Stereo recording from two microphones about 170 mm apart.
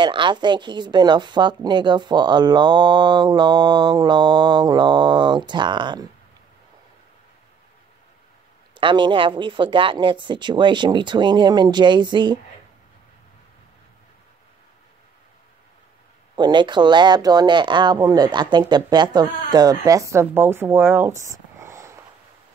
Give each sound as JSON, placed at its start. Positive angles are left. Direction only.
{"t": 0.0, "sound": "a woman's voice", "side_deg": -25}
{"t": 8.7, "sound": "a woman's voice", "side_deg": -30}
{"t": 16.3, "sound": "a woman's voice", "side_deg": -25}